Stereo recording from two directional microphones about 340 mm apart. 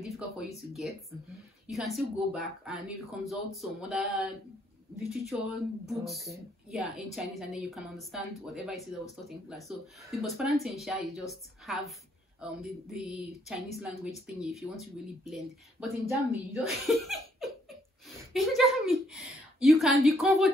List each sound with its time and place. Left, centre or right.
0.6 s speech: centre